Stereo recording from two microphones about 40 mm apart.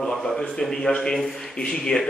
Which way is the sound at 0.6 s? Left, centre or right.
Centre.